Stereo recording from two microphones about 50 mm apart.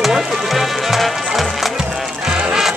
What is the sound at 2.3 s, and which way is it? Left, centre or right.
Music, centre.